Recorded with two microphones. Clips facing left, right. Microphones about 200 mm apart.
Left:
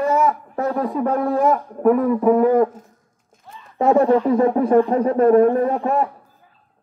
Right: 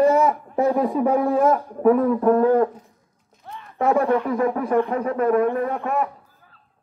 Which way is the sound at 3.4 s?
55° right (ahead or behind).